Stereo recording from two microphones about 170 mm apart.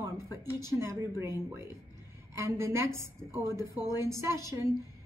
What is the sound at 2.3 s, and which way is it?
A woman's voice, 15° right (ahead or behind).